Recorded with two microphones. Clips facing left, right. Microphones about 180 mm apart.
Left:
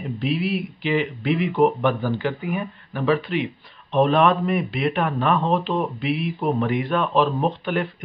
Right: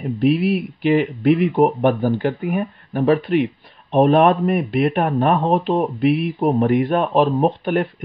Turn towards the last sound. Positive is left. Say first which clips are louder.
# right 5 dB
turn(degrees=-50)  # may be behind; listen again after turning